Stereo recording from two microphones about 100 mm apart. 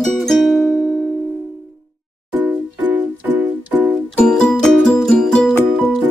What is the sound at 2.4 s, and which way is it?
Music, 15° right (ahead or behind).